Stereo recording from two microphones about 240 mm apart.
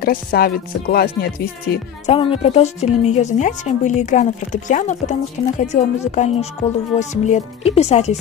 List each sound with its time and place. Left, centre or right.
0.0 s music: left
2.0 s a woman's voice: left